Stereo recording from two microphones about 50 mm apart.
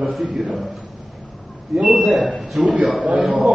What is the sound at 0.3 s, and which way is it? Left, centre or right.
Speech, centre.